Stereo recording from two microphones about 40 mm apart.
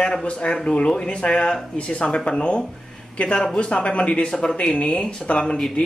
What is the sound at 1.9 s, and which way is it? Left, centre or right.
A man's voice, left.